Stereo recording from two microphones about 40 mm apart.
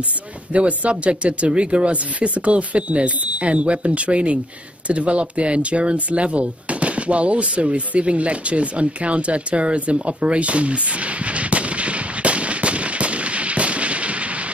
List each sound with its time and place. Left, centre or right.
0.5 s speech: right